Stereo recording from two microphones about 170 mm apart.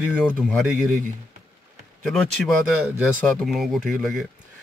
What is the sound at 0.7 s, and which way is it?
Speech, 50° right (ahead or behind).